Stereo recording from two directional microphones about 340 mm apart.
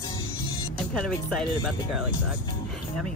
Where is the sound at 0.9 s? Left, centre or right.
Centre.